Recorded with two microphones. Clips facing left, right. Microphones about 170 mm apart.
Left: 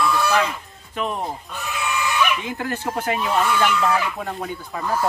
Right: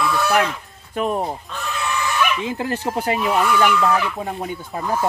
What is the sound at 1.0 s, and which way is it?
Speech, 45° right (ahead or behind).